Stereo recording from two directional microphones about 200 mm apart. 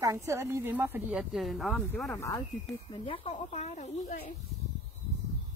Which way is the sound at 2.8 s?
25° left (ahead or behind).